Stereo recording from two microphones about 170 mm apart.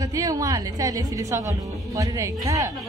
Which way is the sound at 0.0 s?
20° right (ahead or behind).